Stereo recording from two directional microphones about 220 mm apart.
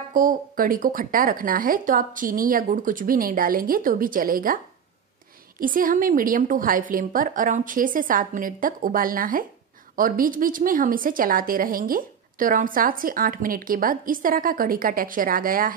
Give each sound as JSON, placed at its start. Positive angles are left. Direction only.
{"t": 0.1, "sound": "a woman's voice", "side_deg": -40}
{"t": 5.6, "sound": "a woman's voice", "side_deg": -40}